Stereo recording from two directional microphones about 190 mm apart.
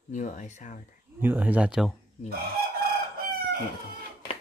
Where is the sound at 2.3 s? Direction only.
50° right (ahead or behind).